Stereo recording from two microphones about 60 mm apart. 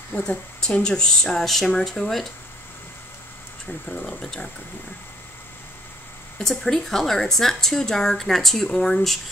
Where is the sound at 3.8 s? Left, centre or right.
Centre.